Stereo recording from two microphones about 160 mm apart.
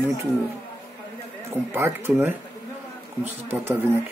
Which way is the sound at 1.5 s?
15° right (ahead or behind).